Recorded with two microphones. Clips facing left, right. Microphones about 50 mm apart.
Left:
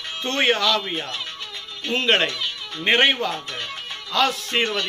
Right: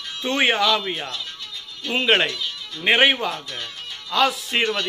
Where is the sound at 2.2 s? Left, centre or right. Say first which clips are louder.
Left 1 dB; left.